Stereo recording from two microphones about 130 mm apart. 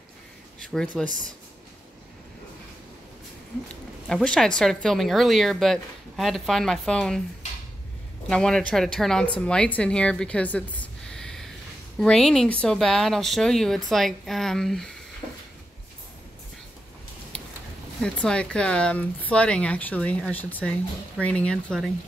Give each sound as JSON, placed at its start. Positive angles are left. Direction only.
{"t": 0.6, "sound": "speech", "side_deg": 5}
{"t": 1.0, "sound": "speech", "side_deg": -80}
{"t": 4.1, "sound": "a woman's voice", "side_deg": 5}
{"t": 8.3, "sound": "a woman's voice", "side_deg": 5}
{"t": 18.0, "sound": "speech", "side_deg": 5}